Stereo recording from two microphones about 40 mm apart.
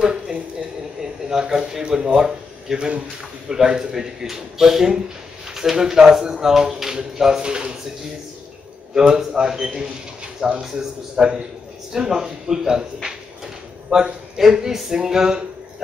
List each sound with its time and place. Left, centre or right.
0.0 s a sound: right
1.3 s speech: centre
8.9 s speech: centre
10.6 s speech: centre